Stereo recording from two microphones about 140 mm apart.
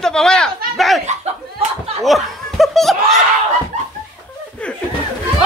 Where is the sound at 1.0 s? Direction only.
55° right (ahead or behind).